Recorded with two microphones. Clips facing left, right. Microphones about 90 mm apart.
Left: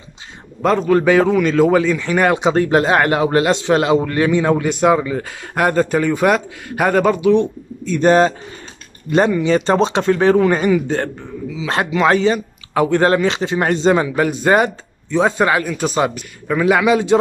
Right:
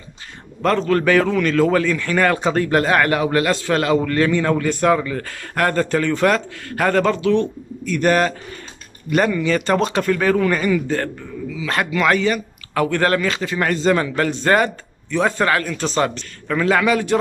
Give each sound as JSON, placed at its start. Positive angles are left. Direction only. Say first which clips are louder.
{"t": 0.6, "sound": "a man's voice", "louder": "left 3 dB", "side_deg": 15}
{"t": 14.0, "sound": "a man's voice", "louder": "left 3 dB", "side_deg": 10}